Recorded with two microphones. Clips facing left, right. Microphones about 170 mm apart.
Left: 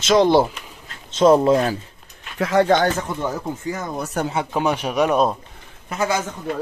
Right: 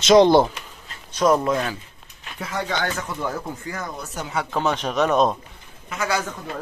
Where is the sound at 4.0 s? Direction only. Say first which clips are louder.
Left 8 dB; 55° left (ahead or behind).